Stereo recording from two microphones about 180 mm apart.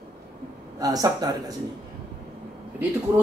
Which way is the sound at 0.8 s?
20° right (ahead or behind).